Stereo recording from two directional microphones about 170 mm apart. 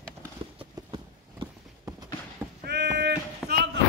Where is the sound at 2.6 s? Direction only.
75° right (ahead or behind).